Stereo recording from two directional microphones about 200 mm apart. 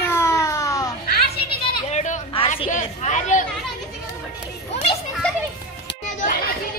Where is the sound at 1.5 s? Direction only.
35° left (ahead or behind).